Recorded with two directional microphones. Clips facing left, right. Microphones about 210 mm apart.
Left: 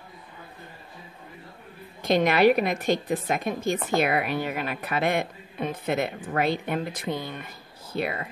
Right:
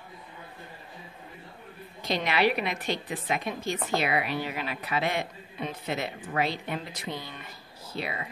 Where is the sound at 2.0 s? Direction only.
50° left (ahead or behind).